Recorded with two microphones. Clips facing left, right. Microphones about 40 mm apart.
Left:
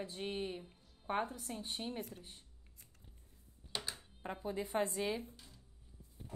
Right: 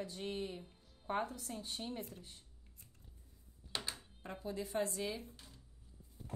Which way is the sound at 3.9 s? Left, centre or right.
Left.